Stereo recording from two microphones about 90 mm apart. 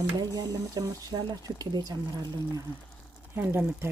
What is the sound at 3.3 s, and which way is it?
Speech, 25° right (ahead or behind).